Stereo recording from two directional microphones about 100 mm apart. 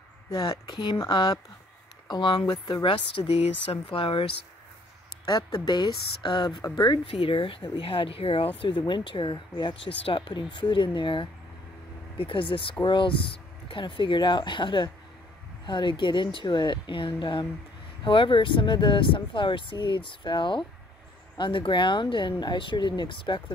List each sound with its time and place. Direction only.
0.3 s speech: 45° left (ahead or behind); by 4.3 s 65° left (ahead or behind)
5.2 s speech: 45° left (ahead or behind)
7.2 s speech: 70° left (ahead or behind)
8.5 s speech: 55° left (ahead or behind)